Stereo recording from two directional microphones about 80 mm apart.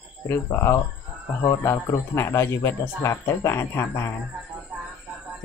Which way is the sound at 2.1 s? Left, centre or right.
Left.